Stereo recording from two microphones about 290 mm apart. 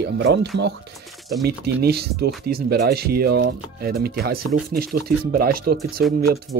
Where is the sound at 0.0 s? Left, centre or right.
Right.